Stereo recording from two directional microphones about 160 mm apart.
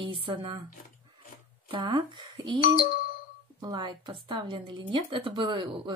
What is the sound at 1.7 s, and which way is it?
Speech, 30° right (ahead or behind).